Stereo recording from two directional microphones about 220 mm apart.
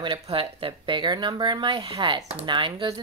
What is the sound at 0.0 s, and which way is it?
Speech, 25° right (ahead or behind).